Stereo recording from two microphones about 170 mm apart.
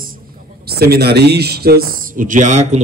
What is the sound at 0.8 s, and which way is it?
Speech, 70° right (ahead or behind).